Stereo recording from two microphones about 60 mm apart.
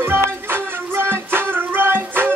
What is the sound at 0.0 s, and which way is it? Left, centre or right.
Music, right.